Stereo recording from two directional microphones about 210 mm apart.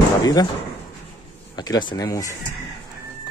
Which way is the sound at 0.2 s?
15° left (ahead or behind).